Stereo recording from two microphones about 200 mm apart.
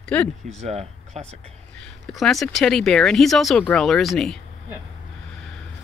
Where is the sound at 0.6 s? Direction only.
35° right (ahead or behind).